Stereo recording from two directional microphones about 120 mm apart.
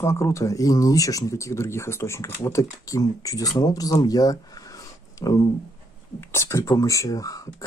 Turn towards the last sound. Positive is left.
turn(degrees=30)  # may be behind; listen again after turning